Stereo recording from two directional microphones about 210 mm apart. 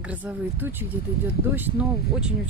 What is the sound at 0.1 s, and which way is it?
Speech, 10° right (ahead or behind).